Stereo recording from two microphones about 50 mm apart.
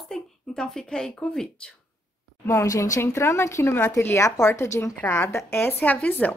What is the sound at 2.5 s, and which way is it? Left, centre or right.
Speech, left.